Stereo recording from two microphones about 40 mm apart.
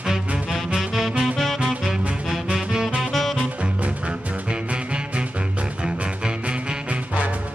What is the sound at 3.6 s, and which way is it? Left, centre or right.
Music, right.